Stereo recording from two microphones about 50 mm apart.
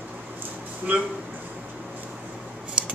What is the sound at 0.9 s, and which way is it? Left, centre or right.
Speech, right.